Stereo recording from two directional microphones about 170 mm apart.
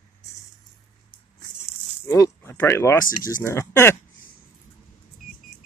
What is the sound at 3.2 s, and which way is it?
Speech, 15° left (ahead or behind).